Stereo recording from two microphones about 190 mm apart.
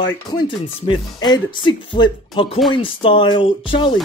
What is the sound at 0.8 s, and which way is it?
Speech, 25° left (ahead or behind).